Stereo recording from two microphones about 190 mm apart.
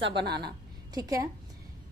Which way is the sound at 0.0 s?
60° right (ahead or behind).